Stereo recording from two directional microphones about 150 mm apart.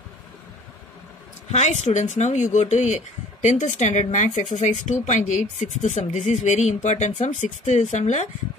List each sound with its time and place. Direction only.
1.5 s speech: 50° left (ahead or behind)